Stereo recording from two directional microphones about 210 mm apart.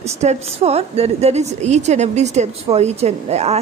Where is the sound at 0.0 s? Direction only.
30° right (ahead or behind).